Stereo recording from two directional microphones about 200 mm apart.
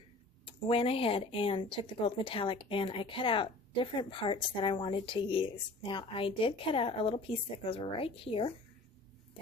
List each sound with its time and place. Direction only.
0.7 s speech: 30° left (ahead or behind)